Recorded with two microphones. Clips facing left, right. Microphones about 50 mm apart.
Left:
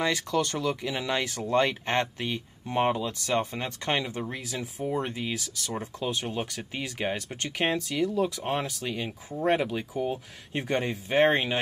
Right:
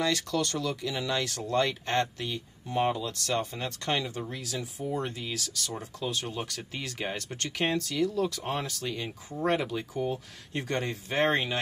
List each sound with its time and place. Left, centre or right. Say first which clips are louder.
0.0 s speech: left 2 dB; left
3.1 s speech: left 3 dB; centre